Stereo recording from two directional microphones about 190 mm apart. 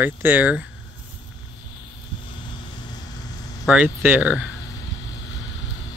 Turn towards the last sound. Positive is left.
turn(degrees=-5)  # may be behind; listen again after turning